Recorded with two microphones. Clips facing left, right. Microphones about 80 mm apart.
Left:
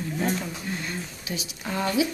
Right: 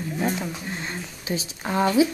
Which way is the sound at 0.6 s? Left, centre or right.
Right.